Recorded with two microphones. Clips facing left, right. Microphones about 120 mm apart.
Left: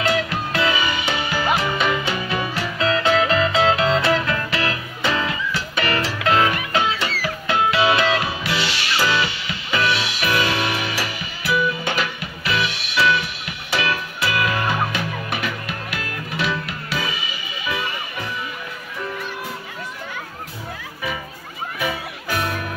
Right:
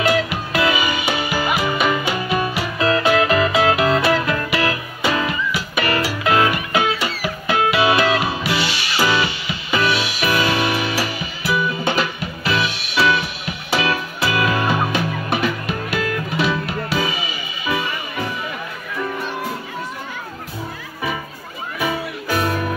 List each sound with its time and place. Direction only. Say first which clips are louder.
0.0 s music: right 3 dB; 10° right (ahead or behind)
21.8 s music: right 4 dB; 30° right (ahead or behind)